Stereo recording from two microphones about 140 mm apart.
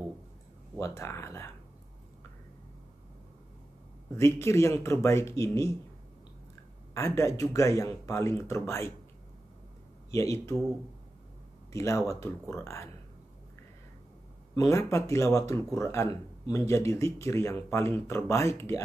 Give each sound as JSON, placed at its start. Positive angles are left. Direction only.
{"t": 0.7, "sound": "speech", "side_deg": 20}
{"t": 4.2, "sound": "speech", "side_deg": 20}
{"t": 6.9, "sound": "speech", "side_deg": 20}
{"t": 10.1, "sound": "speech", "side_deg": 20}
{"t": 11.7, "sound": "speech", "side_deg": 20}
{"t": 14.5, "sound": "speech", "side_deg": 25}